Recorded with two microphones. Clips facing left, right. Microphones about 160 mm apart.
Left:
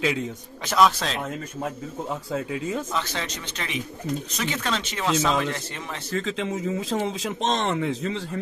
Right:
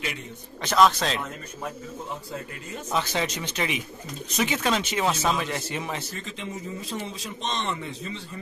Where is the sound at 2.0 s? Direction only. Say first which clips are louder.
Left 9 dB; 90° left.